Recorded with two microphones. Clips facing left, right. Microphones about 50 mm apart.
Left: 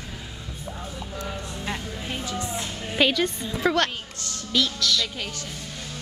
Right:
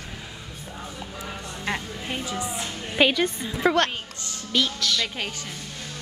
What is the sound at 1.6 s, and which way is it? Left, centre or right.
A woman's voice, centre.